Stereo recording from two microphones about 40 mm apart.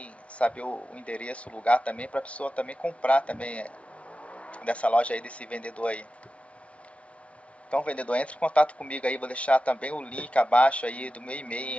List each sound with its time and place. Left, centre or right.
0.0 s speech: left
7.7 s speech: left